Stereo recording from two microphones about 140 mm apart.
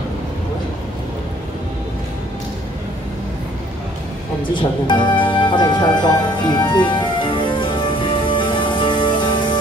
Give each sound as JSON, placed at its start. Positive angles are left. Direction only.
{"t": 4.6, "sound": "music", "side_deg": 35}